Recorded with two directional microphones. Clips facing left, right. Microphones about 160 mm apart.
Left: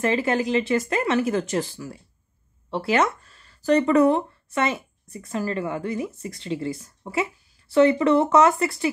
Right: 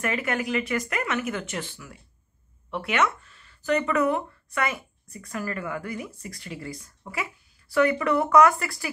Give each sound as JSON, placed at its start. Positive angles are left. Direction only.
{"t": 0.0, "sound": "speech", "side_deg": 30}